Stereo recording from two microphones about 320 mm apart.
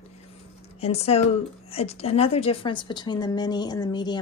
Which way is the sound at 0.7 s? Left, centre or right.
Centre.